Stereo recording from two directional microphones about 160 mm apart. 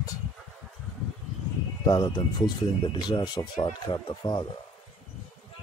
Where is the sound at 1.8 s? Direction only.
25° left (ahead or behind).